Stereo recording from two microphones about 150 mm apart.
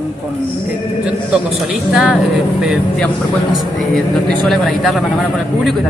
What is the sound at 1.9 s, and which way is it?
Speech, 5° right (ahead or behind).